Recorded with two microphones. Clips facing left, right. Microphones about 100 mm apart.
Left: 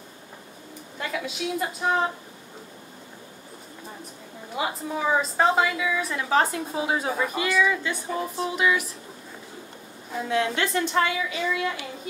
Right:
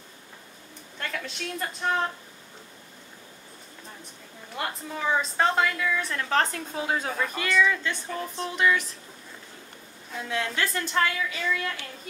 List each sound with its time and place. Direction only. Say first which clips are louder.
0.9 s a woman's voice: left 4 dB; 5° left (ahead or behind)
4.6 s a woman's voice: left 4 dB; 10° left (ahead or behind)
10.1 s a woman's voice: left 5 dB; 5° left (ahead or behind)